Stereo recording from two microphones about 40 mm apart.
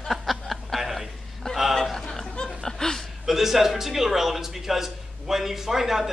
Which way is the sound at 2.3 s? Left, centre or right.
Centre.